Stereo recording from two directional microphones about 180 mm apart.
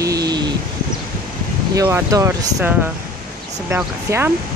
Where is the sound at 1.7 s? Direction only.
20° right (ahead or behind).